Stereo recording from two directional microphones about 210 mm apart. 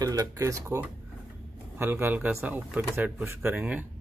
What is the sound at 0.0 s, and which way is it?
Speech, 15° right (ahead or behind).